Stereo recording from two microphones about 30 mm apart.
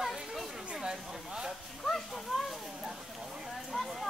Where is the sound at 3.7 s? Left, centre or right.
Centre.